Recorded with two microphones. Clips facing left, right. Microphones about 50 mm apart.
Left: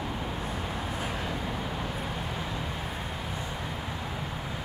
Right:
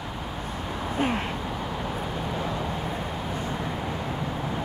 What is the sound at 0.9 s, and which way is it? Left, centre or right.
Vehicle, right.